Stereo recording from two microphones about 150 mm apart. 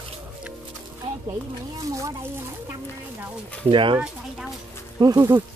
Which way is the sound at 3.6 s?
35° right (ahead or behind).